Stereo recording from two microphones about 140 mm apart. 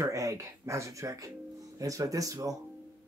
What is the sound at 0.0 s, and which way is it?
Speech, 20° right (ahead or behind).